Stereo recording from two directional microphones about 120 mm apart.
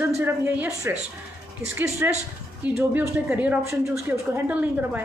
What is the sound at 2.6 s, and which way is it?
A woman's voice, 10° right (ahead or behind).